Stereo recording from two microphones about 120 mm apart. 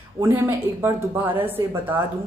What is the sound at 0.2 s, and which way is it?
A woman's voice, 20° right (ahead or behind).